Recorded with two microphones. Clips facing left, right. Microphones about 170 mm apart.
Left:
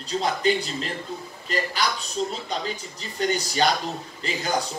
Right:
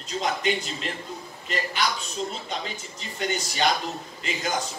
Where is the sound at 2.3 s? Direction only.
35° left (ahead or behind).